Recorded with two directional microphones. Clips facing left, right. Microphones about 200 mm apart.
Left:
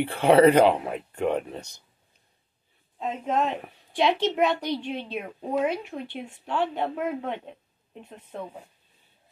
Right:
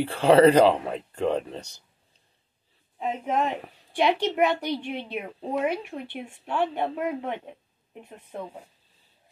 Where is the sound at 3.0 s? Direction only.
10° right (ahead or behind).